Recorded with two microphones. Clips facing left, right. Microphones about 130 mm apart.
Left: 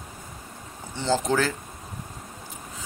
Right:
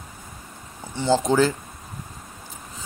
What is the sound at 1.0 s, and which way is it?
Speech, 15° right (ahead or behind).